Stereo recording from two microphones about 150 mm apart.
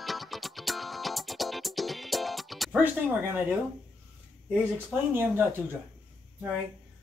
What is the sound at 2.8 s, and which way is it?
Speech, 15° right (ahead or behind).